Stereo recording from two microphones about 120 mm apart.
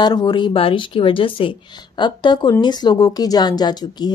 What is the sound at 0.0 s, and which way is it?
A woman's voice, 35° left (ahead or behind).